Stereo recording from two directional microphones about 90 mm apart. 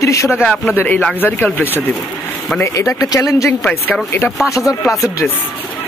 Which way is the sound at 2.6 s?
35° left (ahead or behind).